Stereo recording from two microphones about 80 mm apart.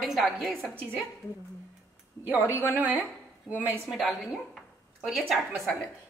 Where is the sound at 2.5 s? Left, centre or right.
Left.